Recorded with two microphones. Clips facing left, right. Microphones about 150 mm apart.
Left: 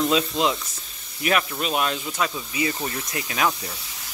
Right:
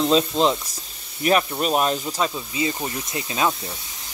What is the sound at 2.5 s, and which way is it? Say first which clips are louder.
Speech: even; 20° right (ahead or behind).